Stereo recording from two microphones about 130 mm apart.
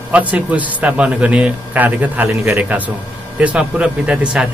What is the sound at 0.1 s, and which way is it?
Speech, 10° right (ahead or behind).